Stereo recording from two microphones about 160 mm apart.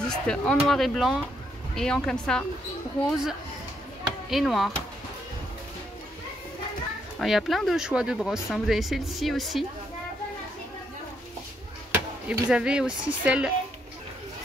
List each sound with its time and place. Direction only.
0.0 s speech: 5° left (ahead or behind)
7.2 s speech: centre (ahead or behind)
11.9 s a child's voice: 5° right (ahead or behind)